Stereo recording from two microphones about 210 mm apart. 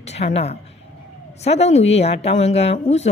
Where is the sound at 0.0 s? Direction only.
30° left (ahead or behind).